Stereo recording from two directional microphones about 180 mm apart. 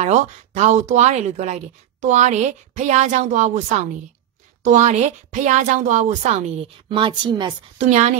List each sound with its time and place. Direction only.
0.0 s speech: 40° right (ahead or behind)
6.9 s a woman's voice: 25° right (ahead or behind)
7.8 s speech: 40° right (ahead or behind)